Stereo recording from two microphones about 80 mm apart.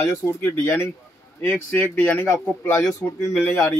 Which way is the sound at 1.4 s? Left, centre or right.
Centre.